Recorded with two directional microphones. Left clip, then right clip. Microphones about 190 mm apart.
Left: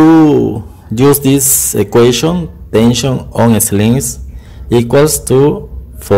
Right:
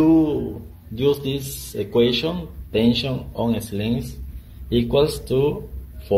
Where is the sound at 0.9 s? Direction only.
50° left (ahead or behind).